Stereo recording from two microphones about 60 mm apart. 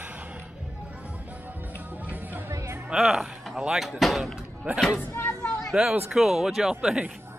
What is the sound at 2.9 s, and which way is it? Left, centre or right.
Speech, centre.